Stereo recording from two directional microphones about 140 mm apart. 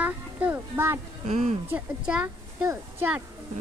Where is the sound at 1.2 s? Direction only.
60° right (ahead or behind).